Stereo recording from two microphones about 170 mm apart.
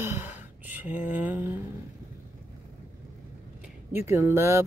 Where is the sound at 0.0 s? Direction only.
15° right (ahead or behind).